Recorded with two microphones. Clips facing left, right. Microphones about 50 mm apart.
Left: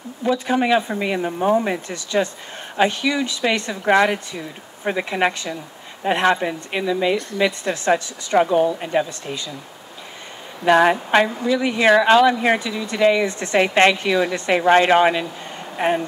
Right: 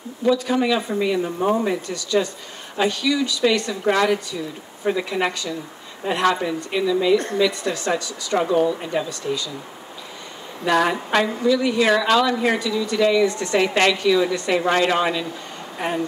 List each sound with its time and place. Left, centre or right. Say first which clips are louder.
0.2 s speech: even; left
1.4 s speech: left 3 dB; centre
1.7 s speech: right 1 dB; left
10.6 s speech: left 4 dB; left